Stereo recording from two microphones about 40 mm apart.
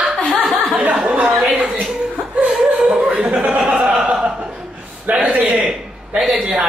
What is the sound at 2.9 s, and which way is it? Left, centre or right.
Chuckle, right.